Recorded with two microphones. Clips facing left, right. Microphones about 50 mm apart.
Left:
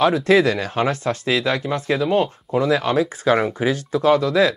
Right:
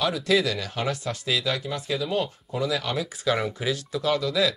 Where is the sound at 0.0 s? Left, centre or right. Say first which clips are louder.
Left 8 dB; left.